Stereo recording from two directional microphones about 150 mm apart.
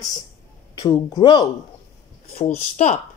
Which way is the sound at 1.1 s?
30° left (ahead or behind).